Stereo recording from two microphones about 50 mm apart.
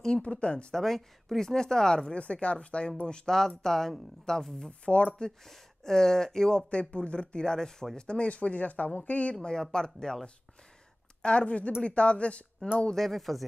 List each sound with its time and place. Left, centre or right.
0.2 s speech: left
0.7 s speech: centre
2.1 s speech: left
5.4 s speech: centre
6.7 s speech: left
11.2 s speech: left
12.9 s speech: centre